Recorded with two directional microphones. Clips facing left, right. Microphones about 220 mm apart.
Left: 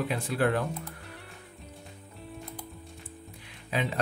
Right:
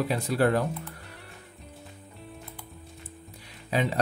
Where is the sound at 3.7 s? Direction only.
40° right (ahead or behind).